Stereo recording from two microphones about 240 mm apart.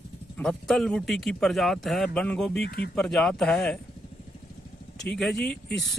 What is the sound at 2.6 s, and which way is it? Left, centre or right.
Speech, left.